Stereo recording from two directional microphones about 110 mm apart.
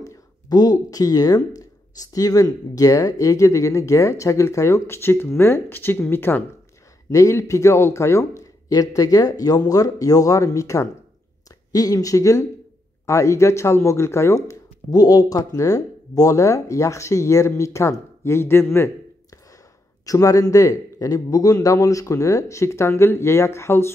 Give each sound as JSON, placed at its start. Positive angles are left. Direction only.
{"t": 0.0, "sound": "speech", "side_deg": 35}
{"t": 20.1, "sound": "speech", "side_deg": 30}